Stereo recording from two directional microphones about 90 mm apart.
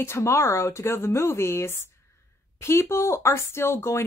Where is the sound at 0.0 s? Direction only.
30° left (ahead or behind).